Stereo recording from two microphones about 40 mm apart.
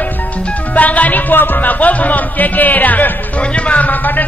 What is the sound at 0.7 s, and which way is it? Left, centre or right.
Speech, left.